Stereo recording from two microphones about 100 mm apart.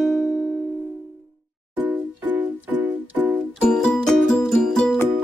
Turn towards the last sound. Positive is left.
turn(degrees=5)  # may be behind; listen again after turning